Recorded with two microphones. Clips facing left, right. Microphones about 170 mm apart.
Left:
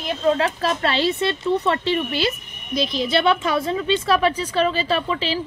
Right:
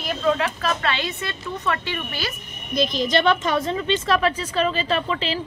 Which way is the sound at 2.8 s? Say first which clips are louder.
Even; centre (ahead or behind).